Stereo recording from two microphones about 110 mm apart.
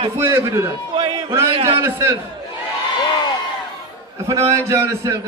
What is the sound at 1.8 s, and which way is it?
Speech, 25° right (ahead or behind).